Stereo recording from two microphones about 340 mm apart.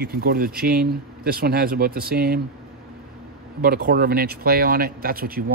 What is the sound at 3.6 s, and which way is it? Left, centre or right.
Speech, right.